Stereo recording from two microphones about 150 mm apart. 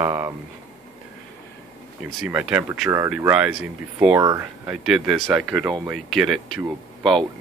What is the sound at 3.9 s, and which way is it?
Speech, 15° right (ahead or behind).